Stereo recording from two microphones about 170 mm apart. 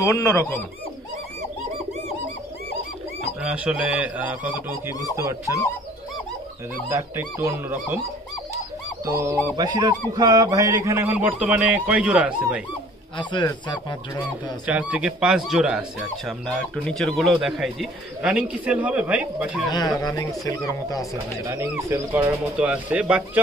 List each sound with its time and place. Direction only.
0.0 s speech: 15° left (ahead or behind)
3.4 s speech: 5° right (ahead or behind)
6.9 s speech: 15° right (ahead or behind)
9.0 s speech: 20° right (ahead or behind)
13.2 s speech: 25° left (ahead or behind)
14.7 s speech: 5° right (ahead or behind)
19.7 s speech: 25° left (ahead or behind)
21.5 s speech: 15° right (ahead or behind)